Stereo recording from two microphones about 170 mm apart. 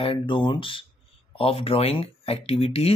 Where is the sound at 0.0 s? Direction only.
30° left (ahead or behind).